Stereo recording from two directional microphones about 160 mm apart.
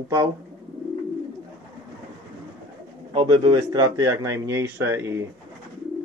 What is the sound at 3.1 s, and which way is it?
Speech, 30° right (ahead or behind).